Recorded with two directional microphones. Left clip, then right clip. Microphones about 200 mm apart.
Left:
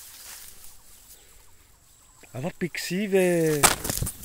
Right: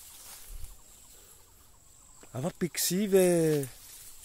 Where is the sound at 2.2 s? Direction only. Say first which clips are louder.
Left 2 dB; 15° right (ahead or behind).